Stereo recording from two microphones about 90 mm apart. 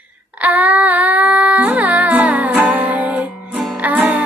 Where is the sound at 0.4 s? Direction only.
15° right (ahead or behind).